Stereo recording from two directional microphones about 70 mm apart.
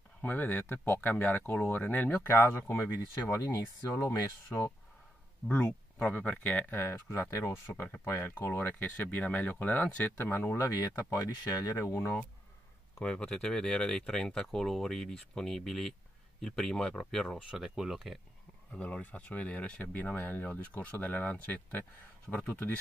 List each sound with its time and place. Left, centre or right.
0.2 s speech: left
5.6 s speech: centre
7.1 s speech: left
11.0 s speech: left
13.0 s speech: centre
17.6 s speech: centre
18.7 s speech: centre